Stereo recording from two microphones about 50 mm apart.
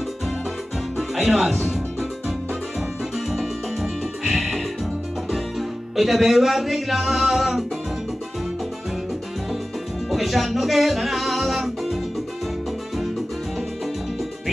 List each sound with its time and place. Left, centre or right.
0.9 s music: centre
3.3 s music: centre
10.1 s music: centre